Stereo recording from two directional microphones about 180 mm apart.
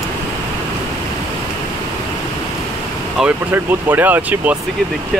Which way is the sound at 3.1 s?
10° right (ahead or behind).